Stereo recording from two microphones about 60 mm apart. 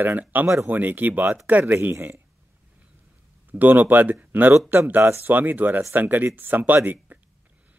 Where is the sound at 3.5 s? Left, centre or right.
Right.